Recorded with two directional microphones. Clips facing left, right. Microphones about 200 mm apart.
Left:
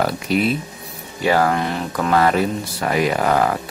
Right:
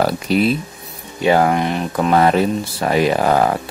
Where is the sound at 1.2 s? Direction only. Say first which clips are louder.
Right 3 dB; 20° right (ahead or behind).